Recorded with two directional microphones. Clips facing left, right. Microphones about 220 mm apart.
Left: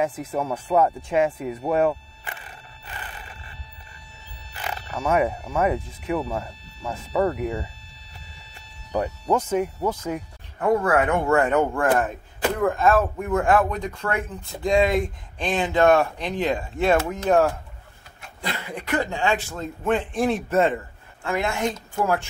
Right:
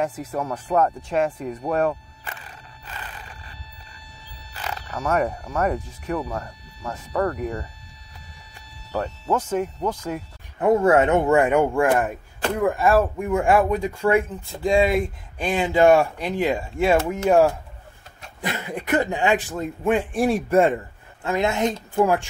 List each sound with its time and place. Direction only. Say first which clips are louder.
0.2 s speech: left 1 dB; 5° left (ahead or behind)
4.6 s music: even; 20° left (ahead or behind)
4.9 s speech: left 1 dB; 10° left (ahead or behind)
8.5 s music: left 2 dB; 15° left (ahead or behind)
9.3 s speech: left 1 dB; 10° left (ahead or behind)
10.6 s speech: right 3 dB; 25° right (ahead or behind)
18.4 s a woman's voice: right 3 dB; 20° right (ahead or behind)